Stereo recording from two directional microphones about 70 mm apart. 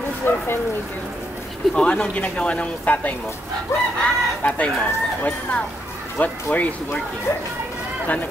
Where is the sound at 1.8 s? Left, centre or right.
Centre.